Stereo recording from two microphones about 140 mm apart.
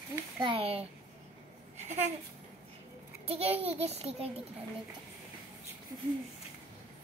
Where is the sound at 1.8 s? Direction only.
55° right (ahead or behind).